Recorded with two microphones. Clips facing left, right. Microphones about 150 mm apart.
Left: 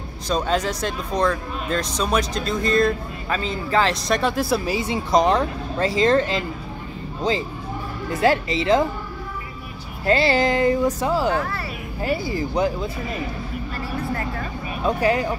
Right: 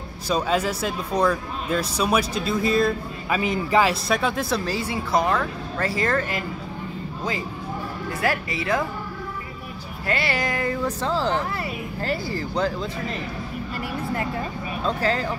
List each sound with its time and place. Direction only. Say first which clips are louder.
0.3 s speech: even; 5° right (ahead or behind)
4.6 s speech: left 3 dB; 15° left (ahead or behind)
8.1 s speech: left 7 dB; 25° left (ahead or behind)
10.0 s speech: left 7 dB; 30° left (ahead or behind); by 13.2 s 10° left (ahead or behind)
14.8 s speech: left 4 dB; 15° left (ahead or behind)